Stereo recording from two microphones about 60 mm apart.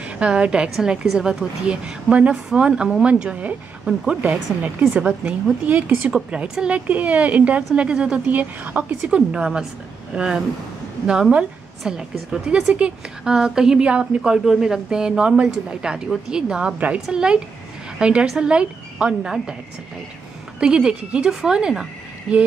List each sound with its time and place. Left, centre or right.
0.0 s a woman's voice: centre
4.2 s speech: right
6.1 s speech: centre
9.1 s a woman's voice: centre
20.5 s a woman's voice: centre